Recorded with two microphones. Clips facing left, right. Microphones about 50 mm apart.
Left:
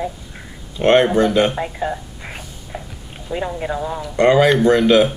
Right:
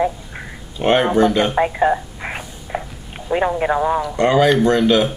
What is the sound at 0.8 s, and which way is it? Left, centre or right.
Speech, centre.